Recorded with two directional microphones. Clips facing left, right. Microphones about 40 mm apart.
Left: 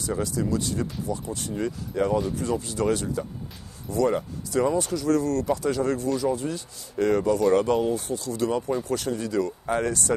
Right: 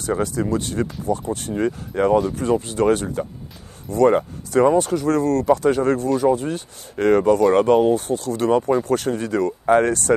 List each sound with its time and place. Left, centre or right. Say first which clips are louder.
0.0 s speech: right 5 dB; right